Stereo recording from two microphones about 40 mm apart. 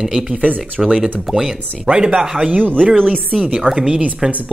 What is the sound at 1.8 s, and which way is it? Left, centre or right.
Speech, right.